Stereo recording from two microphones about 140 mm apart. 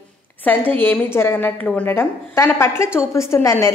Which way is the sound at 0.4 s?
10° left (ahead or behind).